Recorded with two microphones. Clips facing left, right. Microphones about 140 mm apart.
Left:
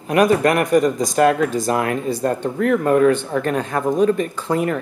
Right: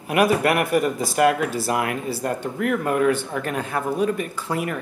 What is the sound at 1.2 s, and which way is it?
Speech, 30° left (ahead or behind).